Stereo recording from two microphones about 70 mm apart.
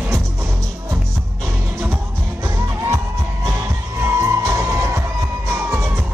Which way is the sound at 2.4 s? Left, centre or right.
Right.